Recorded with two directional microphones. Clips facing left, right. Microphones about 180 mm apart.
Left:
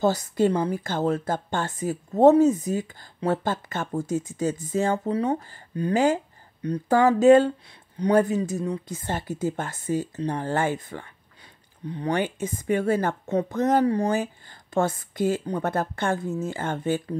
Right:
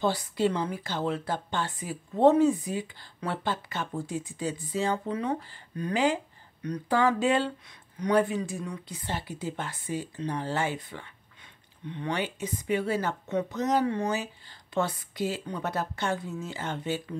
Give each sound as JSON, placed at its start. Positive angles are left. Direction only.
{"t": 0.0, "sound": "speech", "side_deg": 45}
{"t": 5.2, "sound": "speech", "side_deg": 30}
{"t": 6.9, "sound": "speech", "side_deg": 45}
{"t": 11.8, "sound": "speech", "side_deg": 35}
{"t": 12.1, "sound": "speech", "side_deg": 50}
{"t": 13.8, "sound": "speech", "side_deg": 35}
{"t": 14.1, "sound": "speech", "side_deg": 50}